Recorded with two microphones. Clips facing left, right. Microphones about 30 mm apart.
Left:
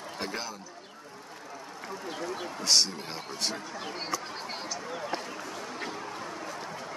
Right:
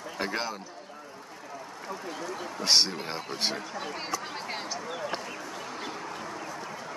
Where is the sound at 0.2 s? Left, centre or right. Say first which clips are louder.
Right 5 dB; right.